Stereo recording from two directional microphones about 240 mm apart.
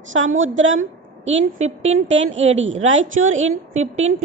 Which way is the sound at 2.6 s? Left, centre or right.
Right.